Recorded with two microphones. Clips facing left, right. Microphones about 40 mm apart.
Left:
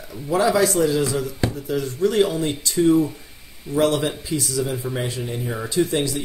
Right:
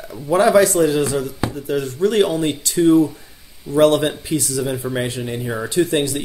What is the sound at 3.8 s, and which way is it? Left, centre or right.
Speech, right.